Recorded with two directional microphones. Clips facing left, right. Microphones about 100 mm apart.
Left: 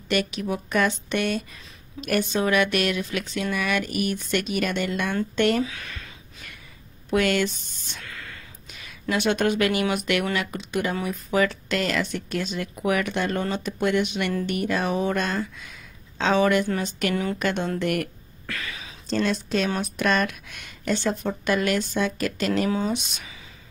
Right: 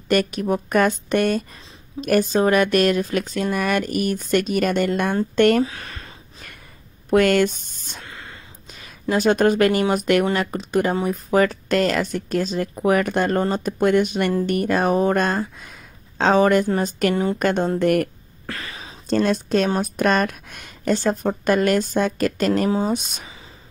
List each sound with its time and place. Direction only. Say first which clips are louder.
0.1 s speech: right 6 dB; 45° right (ahead or behind)
8.0 s a sound: right 1 dB; 25° right (ahead or behind)
9.1 s speech: right 5 dB; 40° right (ahead or behind)
17.1 s a woman's voice: right 5 dB; 25° right (ahead or behind)
17.4 s speech: right 6 dB; 45° right (ahead or behind)